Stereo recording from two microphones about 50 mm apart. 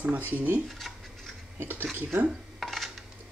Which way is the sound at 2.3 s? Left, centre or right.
Centre.